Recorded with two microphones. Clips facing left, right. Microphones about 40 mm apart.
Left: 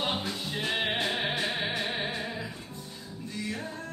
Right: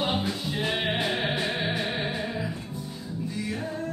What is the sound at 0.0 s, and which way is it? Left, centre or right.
Music, centre.